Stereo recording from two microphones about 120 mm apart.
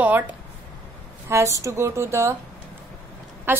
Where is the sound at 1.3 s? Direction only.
25° right (ahead or behind).